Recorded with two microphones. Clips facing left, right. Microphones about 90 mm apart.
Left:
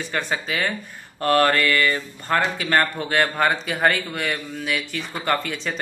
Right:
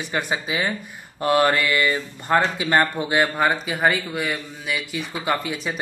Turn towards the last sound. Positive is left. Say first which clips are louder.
# even
turn(degrees=-10)  # may be behind; listen again after turning